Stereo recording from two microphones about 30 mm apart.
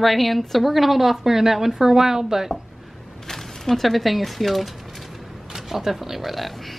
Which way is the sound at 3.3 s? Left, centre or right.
Centre.